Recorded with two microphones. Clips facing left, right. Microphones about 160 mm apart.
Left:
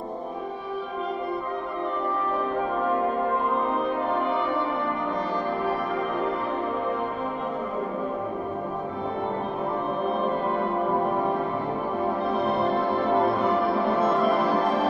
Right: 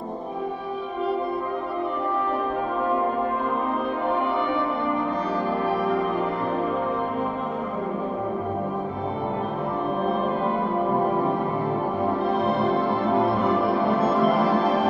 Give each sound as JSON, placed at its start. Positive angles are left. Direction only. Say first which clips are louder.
{"t": 12.6, "sound": "music", "louder": "right 1 dB", "side_deg": 0}